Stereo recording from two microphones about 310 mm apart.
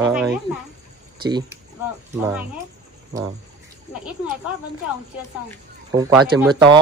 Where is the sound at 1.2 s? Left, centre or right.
Centre.